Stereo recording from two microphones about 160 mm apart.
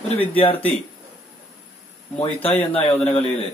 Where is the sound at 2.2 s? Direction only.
40° left (ahead or behind).